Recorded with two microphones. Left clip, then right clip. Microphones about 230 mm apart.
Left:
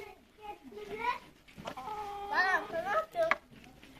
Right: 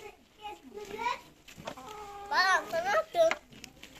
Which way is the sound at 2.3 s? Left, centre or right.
Right.